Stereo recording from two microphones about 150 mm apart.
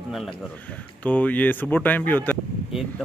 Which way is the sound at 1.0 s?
10° left (ahead or behind).